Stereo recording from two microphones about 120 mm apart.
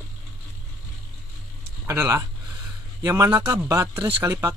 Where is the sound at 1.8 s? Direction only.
20° right (ahead or behind).